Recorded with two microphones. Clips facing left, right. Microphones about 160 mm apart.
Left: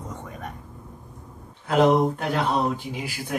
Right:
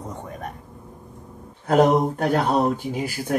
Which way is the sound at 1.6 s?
45° right (ahead or behind).